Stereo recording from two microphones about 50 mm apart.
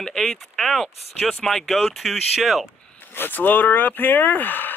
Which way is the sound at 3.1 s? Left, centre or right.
Left.